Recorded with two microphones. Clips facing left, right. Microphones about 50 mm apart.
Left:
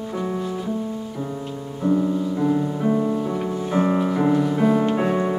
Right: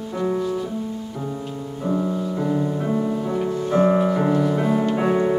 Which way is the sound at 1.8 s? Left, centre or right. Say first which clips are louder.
Left 3 dB; centre.